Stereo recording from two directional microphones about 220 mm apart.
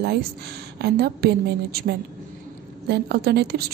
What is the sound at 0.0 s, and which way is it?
A woman's voice, 50° right (ahead or behind).